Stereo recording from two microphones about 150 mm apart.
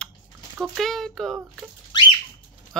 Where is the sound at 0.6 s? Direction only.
Centre (ahead or behind).